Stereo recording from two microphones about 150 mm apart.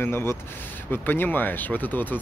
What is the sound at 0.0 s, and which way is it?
Speech, 15° left (ahead or behind).